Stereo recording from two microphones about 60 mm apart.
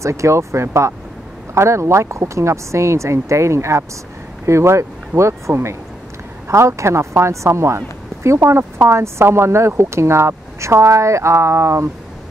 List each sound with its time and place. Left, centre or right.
0.0 s a man's voice: right